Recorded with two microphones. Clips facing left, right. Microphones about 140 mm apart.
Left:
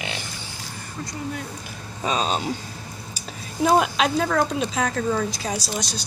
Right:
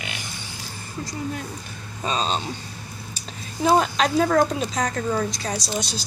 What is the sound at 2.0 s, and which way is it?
Speech, 10° left (ahead or behind).